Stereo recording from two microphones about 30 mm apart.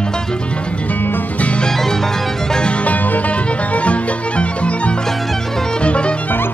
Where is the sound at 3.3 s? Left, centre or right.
Left.